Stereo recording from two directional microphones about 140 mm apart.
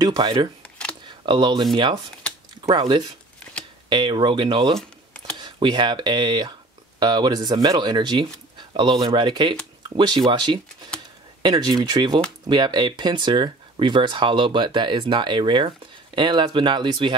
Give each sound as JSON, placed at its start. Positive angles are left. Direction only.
{"t": 0.0, "sound": "speech", "side_deg": -30}
{"t": 0.6, "sound": "camera", "side_deg": 10}
{"t": 1.2, "sound": "speech", "side_deg": -35}
{"t": 2.7, "sound": "speech", "side_deg": -35}
{"t": 4.7, "sound": "a sound", "side_deg": 5}
{"t": 5.4, "sound": "speech", "side_deg": -30}